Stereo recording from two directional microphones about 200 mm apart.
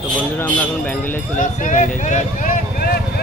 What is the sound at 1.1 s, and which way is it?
Speech, 40° left (ahead or behind).